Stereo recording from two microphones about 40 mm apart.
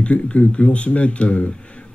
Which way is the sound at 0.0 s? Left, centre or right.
Left.